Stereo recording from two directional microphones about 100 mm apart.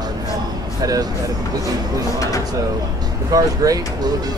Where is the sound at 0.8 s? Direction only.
35° right (ahead or behind).